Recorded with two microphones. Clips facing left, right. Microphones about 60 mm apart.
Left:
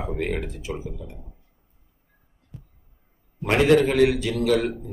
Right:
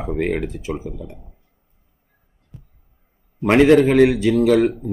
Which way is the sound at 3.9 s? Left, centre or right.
Right.